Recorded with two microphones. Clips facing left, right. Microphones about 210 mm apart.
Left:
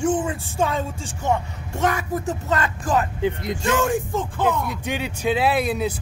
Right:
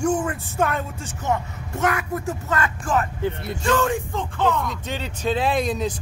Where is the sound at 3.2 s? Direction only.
15° left (ahead or behind).